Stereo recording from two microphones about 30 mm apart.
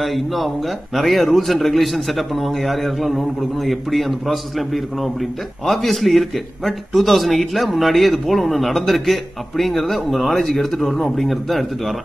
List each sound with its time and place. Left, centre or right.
0.0 s a man's voice: centre
10.5 s speech: centre
11.0 s a man's voice: centre